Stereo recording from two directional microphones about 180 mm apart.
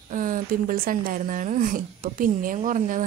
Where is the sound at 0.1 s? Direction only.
50° right (ahead or behind).